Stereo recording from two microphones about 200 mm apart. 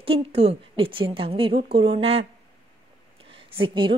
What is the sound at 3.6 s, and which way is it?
Speech, 25° right (ahead or behind).